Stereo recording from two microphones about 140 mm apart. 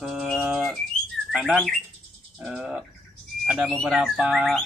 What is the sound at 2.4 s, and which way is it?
Speech, 5° right (ahead or behind).